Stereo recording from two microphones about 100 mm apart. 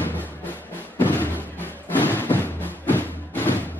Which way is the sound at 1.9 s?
20° left (ahead or behind).